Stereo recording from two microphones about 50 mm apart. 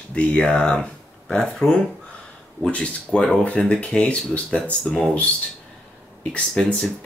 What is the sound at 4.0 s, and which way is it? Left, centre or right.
Speech, left.